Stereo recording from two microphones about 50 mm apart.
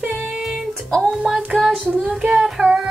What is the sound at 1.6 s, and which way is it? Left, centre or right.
Child singing, centre.